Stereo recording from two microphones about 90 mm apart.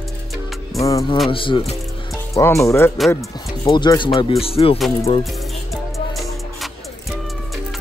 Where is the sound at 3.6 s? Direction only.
55° left (ahead or behind); by 4.7 s 90° left.